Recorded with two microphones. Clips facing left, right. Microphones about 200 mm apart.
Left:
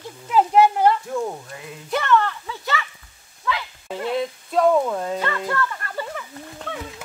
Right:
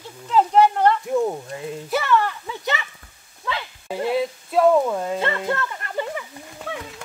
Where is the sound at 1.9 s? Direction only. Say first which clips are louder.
Left 1 dB; 10° right (ahead or behind).